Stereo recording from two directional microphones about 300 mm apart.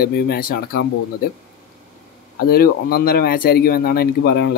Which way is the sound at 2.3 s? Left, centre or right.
Left.